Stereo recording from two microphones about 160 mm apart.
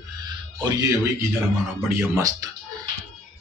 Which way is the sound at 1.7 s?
15° right (ahead or behind).